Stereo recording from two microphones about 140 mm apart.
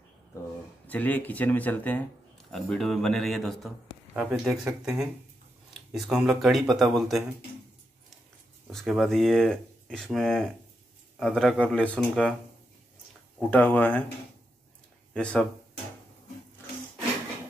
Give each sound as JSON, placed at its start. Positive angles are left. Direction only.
{"t": 0.8, "sound": "speech", "side_deg": 10}
{"t": 8.7, "sound": "speech", "side_deg": 0}
{"t": 13.4, "sound": "speech", "side_deg": 10}
{"t": 15.1, "sound": "speech", "side_deg": 5}